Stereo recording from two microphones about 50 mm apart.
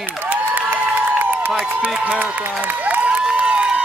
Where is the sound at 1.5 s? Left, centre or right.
Right.